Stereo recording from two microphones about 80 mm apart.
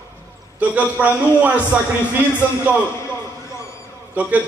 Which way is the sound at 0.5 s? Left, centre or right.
Centre.